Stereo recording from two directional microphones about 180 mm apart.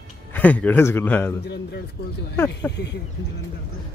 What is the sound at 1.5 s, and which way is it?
Speech, 65° left (ahead or behind).